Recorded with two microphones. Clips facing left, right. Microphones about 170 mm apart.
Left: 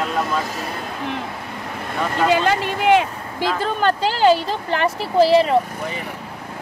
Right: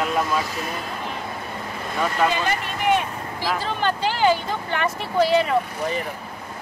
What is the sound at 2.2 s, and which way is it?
Speech, 85° left.